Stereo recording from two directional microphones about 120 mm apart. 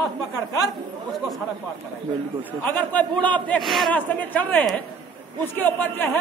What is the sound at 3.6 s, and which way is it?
Speech, centre (ahead or behind).